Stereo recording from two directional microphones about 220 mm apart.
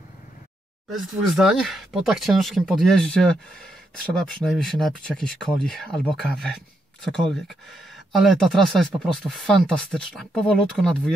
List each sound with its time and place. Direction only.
0.9 s speech: centre (ahead or behind)